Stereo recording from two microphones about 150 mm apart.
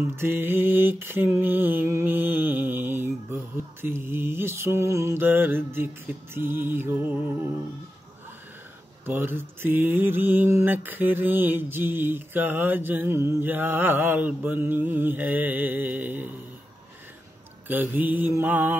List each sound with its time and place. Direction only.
0.1 s mantra: 15° right (ahead or behind)
9.0 s mantra: 15° right (ahead or behind)
17.6 s mantra: 10° right (ahead or behind)